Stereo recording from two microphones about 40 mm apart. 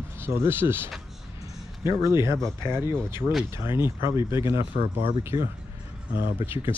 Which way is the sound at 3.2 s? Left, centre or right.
Left.